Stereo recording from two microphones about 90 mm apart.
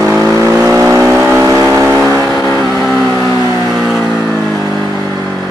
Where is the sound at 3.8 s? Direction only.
Centre (ahead or behind).